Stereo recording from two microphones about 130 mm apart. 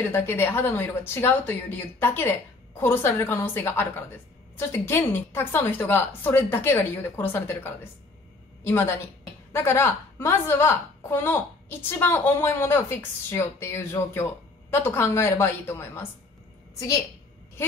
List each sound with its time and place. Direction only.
0.1 s a woman's voice: 15° left (ahead or behind)